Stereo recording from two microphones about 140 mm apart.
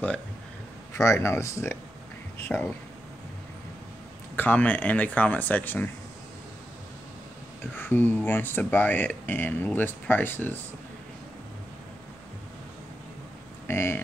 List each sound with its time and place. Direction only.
0.9 s speech: 20° left (ahead or behind)
4.4 s speech: 10° left (ahead or behind)
7.7 s speech: 15° left (ahead or behind)
13.7 s speech: 15° left (ahead or behind)